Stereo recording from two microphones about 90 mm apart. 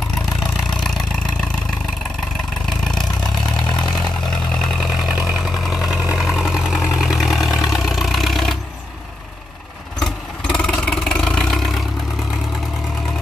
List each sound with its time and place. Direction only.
0.7 s engine: centre (ahead or behind)
2.6 s vehicle: 5° left (ahead or behind)
4.5 s vehicle: 5° left (ahead or behind)
9.9 s vehicle: 5° left (ahead or behind)